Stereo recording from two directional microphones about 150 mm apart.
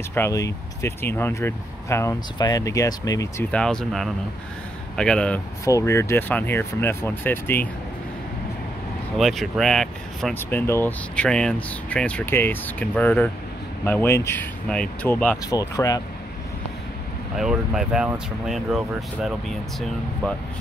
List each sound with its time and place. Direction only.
0.1 s speech: 20° left (ahead or behind)
3.5 s speech: 5° left (ahead or behind)
5.7 s speech: 20° left (ahead or behind)
9.2 s speech: centre (ahead or behind)
10.3 s speech: 15° left (ahead or behind)
15.5 s speech: 25° left (ahead or behind)
17.4 s speech: 5° right (ahead or behind)